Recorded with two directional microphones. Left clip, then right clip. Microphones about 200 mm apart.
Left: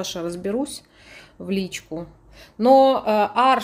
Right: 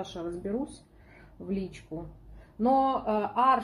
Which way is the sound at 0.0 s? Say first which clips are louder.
Left 9 dB; 45° left (ahead or behind).